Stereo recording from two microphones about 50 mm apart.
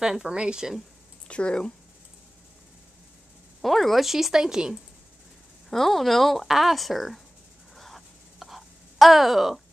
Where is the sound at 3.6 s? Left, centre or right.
Centre.